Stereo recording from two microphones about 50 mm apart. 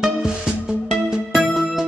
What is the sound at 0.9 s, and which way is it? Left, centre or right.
Music, centre.